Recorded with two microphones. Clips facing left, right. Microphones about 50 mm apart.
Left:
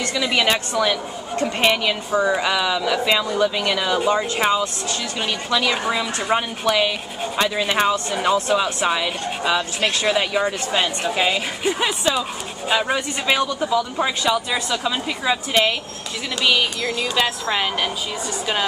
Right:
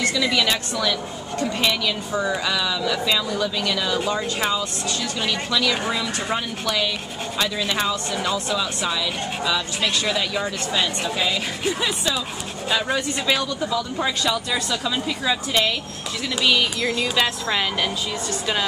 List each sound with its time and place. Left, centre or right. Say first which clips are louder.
0.0 s speech: left 1 dB; left
5.9 s a woman's voice: left 3 dB; centre
6.3 s speech: left 7 dB; left
16.9 s a woman's voice: left 1 dB; centre